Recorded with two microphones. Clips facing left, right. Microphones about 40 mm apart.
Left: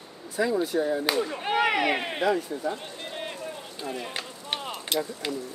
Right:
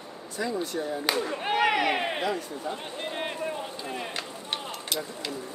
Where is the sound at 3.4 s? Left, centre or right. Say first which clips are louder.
Right 2 dB; right.